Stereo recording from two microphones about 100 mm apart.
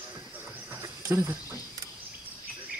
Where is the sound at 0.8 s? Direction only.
30° right (ahead or behind).